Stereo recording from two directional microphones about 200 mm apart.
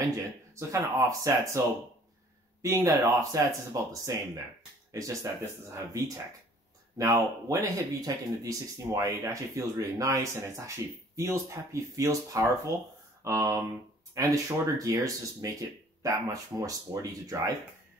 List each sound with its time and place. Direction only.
0.6 s speech: 15° right (ahead or behind)
2.6 s speech: 15° right (ahead or behind)